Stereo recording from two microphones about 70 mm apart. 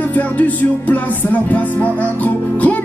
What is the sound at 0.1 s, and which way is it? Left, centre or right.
Music, left.